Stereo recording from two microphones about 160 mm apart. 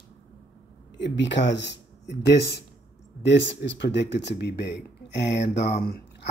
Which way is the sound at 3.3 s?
90° left.